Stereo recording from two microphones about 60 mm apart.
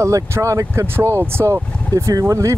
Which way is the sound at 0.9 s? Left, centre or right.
Right.